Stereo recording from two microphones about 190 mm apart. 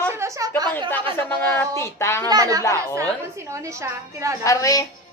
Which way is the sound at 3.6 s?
15° right (ahead or behind).